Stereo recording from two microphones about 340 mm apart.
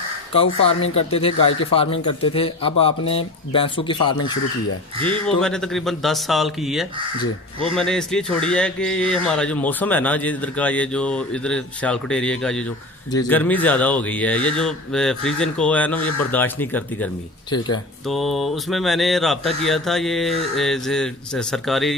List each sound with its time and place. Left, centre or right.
0.3 s speech: centre
5.0 s speech: centre